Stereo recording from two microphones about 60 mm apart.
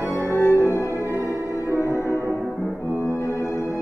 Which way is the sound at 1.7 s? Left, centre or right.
Right.